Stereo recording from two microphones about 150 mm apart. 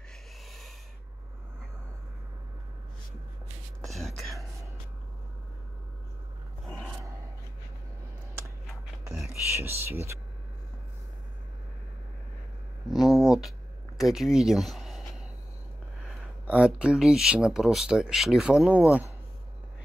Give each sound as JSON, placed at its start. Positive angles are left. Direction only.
{"t": 0.5, "sound": "owl", "side_deg": 0}
{"t": 3.8, "sound": "a sound", "side_deg": 0}
{"t": 9.8, "sound": "speech", "side_deg": -15}
{"t": 12.8, "sound": "a sound", "side_deg": 0}
{"t": 13.9, "sound": "speech", "side_deg": 0}
{"t": 16.4, "sound": "speech", "side_deg": -5}